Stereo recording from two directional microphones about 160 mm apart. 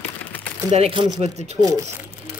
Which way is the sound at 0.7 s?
35° right (ahead or behind).